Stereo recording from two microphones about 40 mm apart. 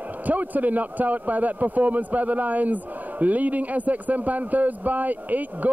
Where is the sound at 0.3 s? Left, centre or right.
Right.